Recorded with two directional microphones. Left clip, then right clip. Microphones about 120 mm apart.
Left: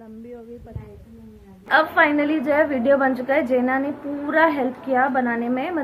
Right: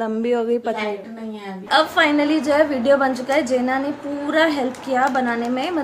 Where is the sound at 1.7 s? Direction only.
20° right (ahead or behind).